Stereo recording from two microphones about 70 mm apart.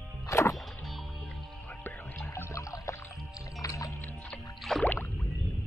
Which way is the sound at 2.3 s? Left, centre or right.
Left.